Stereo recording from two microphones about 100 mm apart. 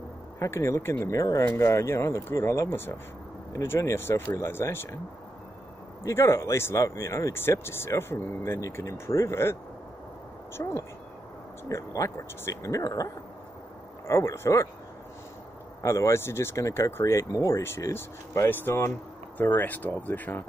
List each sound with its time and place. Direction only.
0.4 s speech: 30° left (ahead or behind)
6.0 s speech: 30° left (ahead or behind)
10.6 s speech: 30° left (ahead or behind)
15.8 s speech: 30° left (ahead or behind)